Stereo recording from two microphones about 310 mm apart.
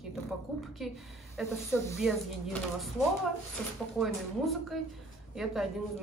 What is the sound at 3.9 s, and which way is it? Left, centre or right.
Speech, centre.